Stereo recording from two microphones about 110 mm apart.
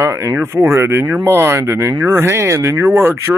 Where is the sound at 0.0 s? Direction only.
25° right (ahead or behind).